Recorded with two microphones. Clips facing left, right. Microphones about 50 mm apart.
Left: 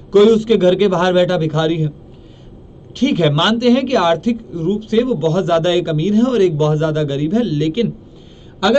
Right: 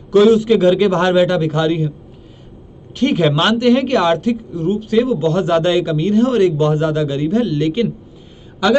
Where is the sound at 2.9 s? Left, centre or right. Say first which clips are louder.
Even; centre.